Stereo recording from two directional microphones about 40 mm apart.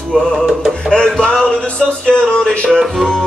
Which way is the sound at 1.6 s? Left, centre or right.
Left.